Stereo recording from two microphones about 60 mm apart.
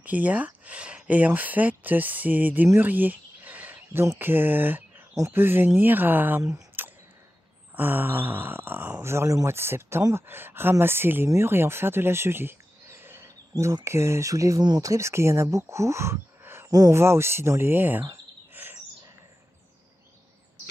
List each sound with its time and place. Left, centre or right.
0.0 s speech: right
2.8 s a sound: right
4.2 s speech: right
5.3 s a sound: right
9.0 s speech: right
10.1 s a sound: right
11.3 s speech: right
16.6 s cricket: right
16.9 s speech: right
18.5 s bird: right